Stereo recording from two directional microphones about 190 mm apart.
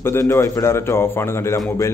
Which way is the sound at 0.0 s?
15° left (ahead or behind).